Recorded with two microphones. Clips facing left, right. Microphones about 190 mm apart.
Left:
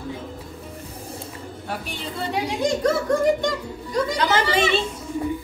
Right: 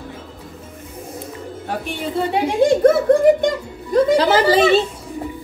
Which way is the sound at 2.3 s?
55° right (ahead or behind).